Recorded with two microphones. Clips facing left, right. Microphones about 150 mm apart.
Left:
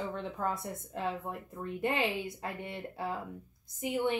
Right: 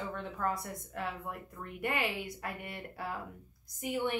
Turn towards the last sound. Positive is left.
turn(degrees=25)  # may be behind; listen again after turning